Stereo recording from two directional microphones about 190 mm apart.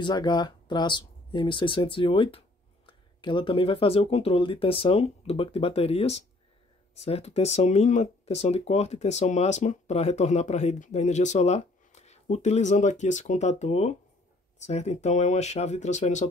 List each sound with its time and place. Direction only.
0.0 s speech: 20° left (ahead or behind); by 16.3 s 40° left (ahead or behind)